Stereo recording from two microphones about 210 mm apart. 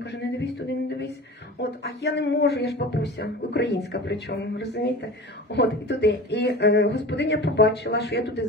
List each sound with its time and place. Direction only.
0.0 s speech: 55° left (ahead or behind)